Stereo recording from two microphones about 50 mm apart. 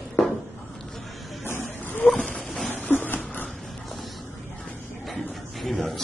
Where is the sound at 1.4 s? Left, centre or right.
Left.